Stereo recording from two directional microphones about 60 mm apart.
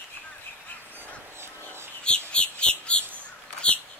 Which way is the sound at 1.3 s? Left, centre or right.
Right.